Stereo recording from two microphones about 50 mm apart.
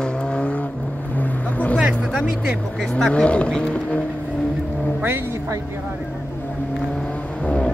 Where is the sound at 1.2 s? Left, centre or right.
Left.